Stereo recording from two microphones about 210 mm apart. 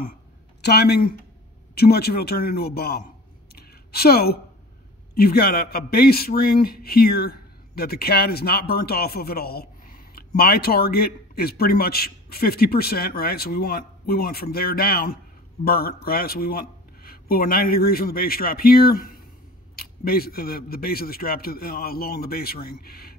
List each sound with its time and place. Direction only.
0.6 s a man's voice: 50° left (ahead or behind)
3.5 s a sound: 45° left (ahead or behind)
5.1 s a man's voice: 45° left (ahead or behind)